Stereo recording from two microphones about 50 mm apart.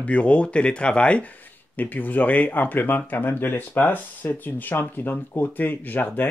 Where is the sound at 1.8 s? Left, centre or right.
Left.